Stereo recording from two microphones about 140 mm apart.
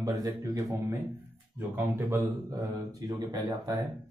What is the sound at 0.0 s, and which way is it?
Speech, 25° right (ahead or behind).